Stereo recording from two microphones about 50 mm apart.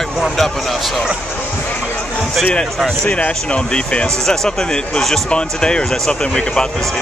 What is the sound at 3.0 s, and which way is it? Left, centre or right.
Speech, left.